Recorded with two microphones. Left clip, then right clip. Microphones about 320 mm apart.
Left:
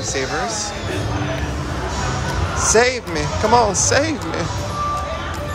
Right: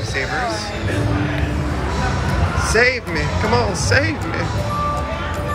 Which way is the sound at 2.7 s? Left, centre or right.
Centre.